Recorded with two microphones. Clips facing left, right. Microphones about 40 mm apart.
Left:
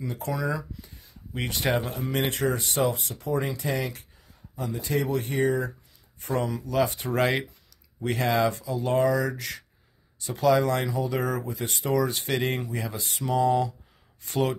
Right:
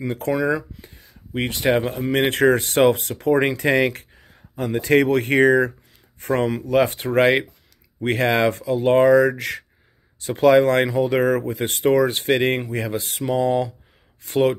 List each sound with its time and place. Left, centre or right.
0.0 s speech: right
2.3 s speech: right
6.3 s speech: right
8.0 s speech: right